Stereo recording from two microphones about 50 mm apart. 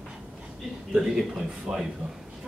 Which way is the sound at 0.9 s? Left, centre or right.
Centre.